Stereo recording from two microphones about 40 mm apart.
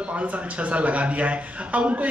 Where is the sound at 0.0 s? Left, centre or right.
Right.